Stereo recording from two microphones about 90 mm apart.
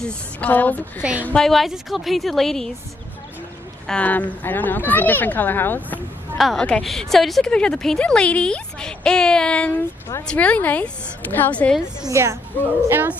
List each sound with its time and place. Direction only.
0.0 s a woman's voice: 15° left (ahead or behind)
1.2 s a woman's voice: 5° left (ahead or behind)
3.8 s speech: 15° left (ahead or behind)
6.3 s a woman's voice: centre (ahead or behind); by 11.7 s 20° left (ahead or behind)
11.7 s a woman's voice: 5° right (ahead or behind)
12.1 s a woman's voice: 30° right (ahead or behind)
12.8 s speech: 20° right (ahead or behind)